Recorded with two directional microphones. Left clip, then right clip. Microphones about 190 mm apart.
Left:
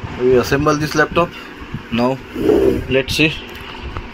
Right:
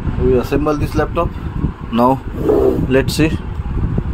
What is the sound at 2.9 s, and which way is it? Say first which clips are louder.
Speech: even; 35° right (ahead or behind).